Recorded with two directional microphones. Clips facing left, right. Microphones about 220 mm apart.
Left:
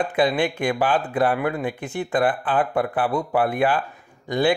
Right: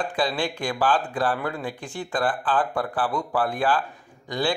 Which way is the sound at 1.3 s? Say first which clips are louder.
Left 5 dB; 10° left (ahead or behind).